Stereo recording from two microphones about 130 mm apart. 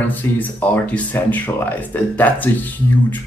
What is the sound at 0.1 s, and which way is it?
Speech, 15° left (ahead or behind).